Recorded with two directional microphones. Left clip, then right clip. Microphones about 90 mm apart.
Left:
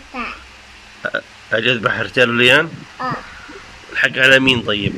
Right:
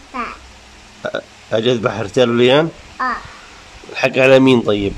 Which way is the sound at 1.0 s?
45° right (ahead or behind).